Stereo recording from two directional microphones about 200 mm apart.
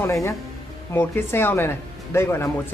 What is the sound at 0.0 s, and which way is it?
Speech, 15° left (ahead or behind).